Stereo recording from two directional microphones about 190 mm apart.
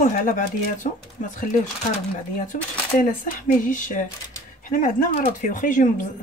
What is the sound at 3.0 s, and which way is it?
A woman's voice, 45° left (ahead or behind).